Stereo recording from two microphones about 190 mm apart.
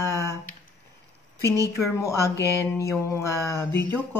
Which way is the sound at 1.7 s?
15° left (ahead or behind).